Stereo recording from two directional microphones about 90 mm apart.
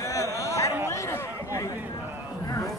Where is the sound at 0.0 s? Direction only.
35° left (ahead or behind).